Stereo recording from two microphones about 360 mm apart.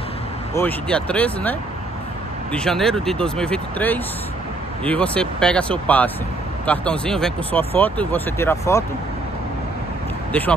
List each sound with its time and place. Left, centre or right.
0.6 s speech: centre